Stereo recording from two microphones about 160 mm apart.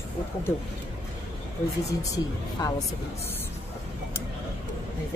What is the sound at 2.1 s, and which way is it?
Speech, 20° left (ahead or behind).